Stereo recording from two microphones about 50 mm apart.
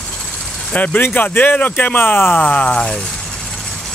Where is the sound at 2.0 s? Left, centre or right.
Left.